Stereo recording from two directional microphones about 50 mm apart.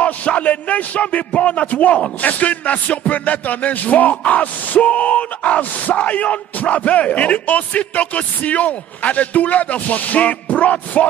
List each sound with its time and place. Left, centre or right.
0.0 s music: left